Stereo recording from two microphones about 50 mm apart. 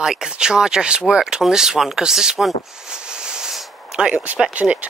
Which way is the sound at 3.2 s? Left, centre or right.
Centre.